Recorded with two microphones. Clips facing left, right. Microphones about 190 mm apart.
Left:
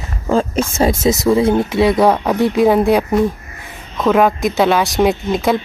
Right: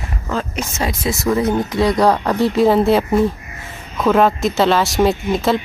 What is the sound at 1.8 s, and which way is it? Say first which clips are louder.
Speech: left 1 dB; 5° left (ahead or behind).